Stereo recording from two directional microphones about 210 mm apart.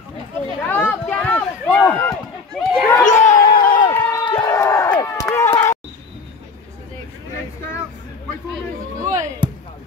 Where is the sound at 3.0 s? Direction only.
35° left (ahead or behind).